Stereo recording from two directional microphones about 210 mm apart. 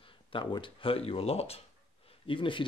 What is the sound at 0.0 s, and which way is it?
Speech, 25° left (ahead or behind).